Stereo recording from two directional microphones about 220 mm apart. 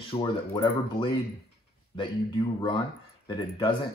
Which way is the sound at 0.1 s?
25° left (ahead or behind).